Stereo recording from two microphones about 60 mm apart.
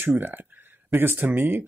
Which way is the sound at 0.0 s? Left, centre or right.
Right.